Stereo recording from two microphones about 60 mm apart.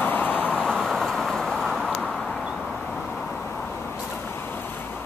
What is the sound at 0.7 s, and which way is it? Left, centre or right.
Vehicle, centre.